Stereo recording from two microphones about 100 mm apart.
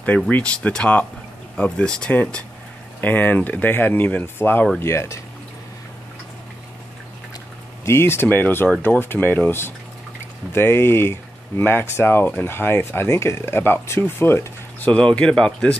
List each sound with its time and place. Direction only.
0.0 s speech: 15° left (ahead or behind)
7.8 s speech: 25° left (ahead or behind)
14.9 s speech: 15° left (ahead or behind)